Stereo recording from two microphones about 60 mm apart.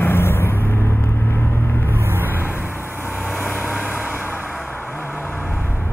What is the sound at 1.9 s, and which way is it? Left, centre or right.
Vehicle, right.